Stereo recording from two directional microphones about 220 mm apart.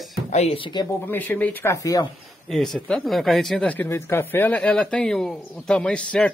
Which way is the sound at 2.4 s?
Centre (ahead or behind).